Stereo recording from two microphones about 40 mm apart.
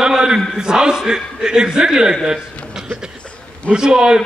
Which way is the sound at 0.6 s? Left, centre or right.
Centre.